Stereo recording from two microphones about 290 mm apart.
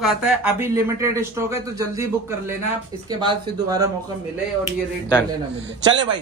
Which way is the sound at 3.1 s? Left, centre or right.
Centre.